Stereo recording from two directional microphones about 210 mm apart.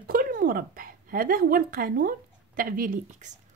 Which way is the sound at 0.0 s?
45° right (ahead or behind).